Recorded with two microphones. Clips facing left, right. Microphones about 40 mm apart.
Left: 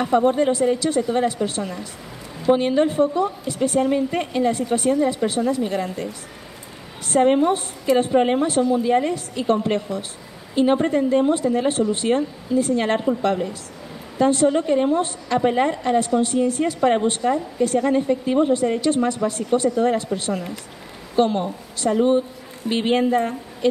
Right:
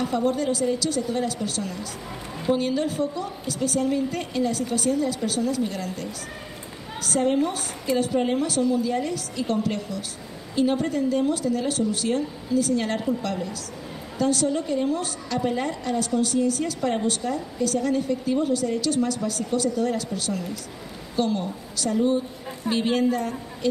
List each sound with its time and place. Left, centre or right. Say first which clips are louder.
0.0 s a woman's voice: left 6 dB; left